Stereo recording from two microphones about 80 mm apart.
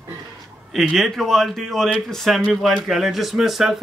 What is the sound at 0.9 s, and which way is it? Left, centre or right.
Speech, centre.